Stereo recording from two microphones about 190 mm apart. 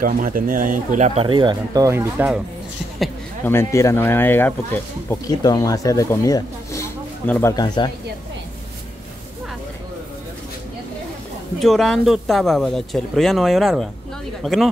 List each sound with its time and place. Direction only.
0.0 s speech: 45° right (ahead or behind); by 2.4 s 5° right (ahead or behind)
3.4 s speech: 15° left (ahead or behind)
7.5 s speech: 20° left (ahead or behind)
11.6 s speech: centre (ahead or behind)